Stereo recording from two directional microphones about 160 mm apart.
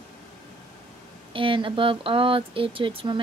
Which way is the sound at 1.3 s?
30° right (ahead or behind).